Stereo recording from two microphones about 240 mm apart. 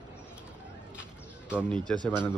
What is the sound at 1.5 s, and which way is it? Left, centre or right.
Speech, centre.